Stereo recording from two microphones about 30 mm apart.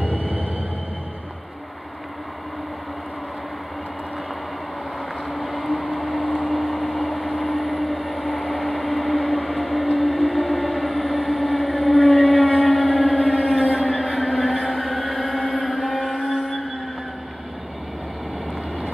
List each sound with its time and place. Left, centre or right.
0.1 s train: left
5.3 s vehicle: centre
12.0 s civil defense siren: centre
13.5 s a sound: centre